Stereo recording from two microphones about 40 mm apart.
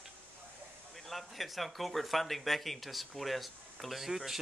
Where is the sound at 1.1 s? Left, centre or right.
Centre.